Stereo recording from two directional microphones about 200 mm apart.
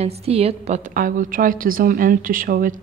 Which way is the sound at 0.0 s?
30° right (ahead or behind).